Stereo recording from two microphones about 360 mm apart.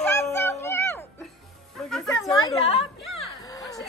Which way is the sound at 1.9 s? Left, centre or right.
Centre.